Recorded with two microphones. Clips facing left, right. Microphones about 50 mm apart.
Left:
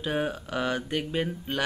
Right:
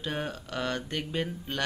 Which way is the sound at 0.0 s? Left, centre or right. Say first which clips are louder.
Left 5 dB; centre.